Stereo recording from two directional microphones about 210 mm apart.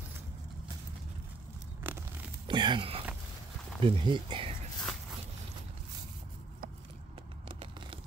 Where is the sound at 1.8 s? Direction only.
10° right (ahead or behind).